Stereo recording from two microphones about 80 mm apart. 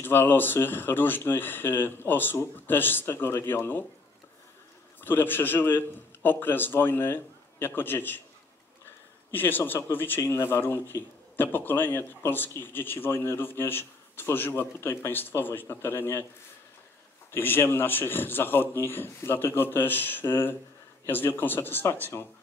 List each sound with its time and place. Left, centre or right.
0.0 s a man's voice: left
5.0 s a man's voice: left
9.3 s a man's voice: left
17.3 s a man's voice: left